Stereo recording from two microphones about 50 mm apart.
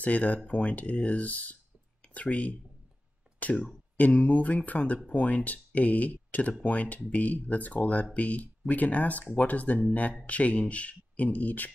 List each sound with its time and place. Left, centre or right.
0.0 s speech: left